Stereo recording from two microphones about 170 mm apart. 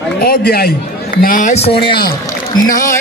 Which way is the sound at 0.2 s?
70° left (ahead or behind).